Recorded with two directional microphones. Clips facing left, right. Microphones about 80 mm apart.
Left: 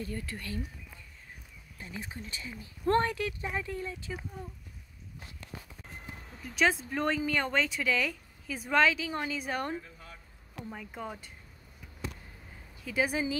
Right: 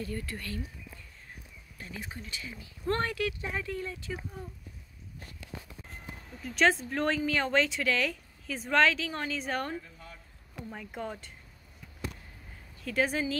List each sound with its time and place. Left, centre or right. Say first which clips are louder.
0.1 s speech: right 1 dB; centre
1.8 s speech: even; left
6.4 s speech: right 2 dB; centre
12.8 s speech: right 1 dB; centre